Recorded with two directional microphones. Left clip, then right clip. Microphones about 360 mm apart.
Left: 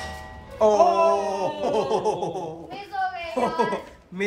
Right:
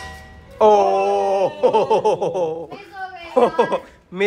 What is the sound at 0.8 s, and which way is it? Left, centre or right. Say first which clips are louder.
Wail: right 2 dB; left.